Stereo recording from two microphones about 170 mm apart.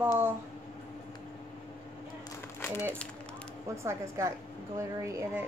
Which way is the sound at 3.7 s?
15° right (ahead or behind).